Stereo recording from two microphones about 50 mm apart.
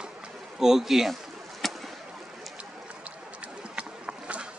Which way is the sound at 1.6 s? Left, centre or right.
Centre.